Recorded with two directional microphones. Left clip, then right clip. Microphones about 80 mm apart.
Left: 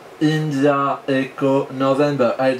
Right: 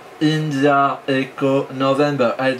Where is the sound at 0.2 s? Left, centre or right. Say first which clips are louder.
Even; centre.